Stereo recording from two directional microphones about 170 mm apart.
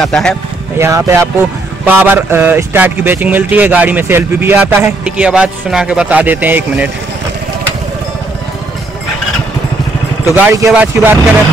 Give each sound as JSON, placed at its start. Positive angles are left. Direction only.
{"t": 0.0, "sound": "speech", "side_deg": 5}
{"t": 0.7, "sound": "speech", "side_deg": -15}
{"t": 10.2, "sound": "speech", "side_deg": -15}